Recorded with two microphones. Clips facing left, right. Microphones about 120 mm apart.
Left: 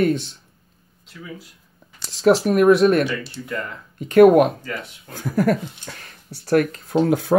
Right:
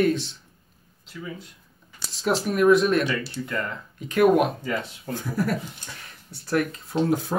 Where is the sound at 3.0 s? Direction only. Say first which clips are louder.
Left 1 dB; 5° left (ahead or behind).